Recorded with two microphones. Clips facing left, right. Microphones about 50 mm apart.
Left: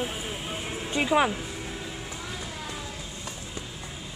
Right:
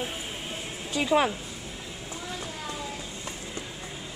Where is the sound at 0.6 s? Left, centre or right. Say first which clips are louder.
Left 2 dB; left.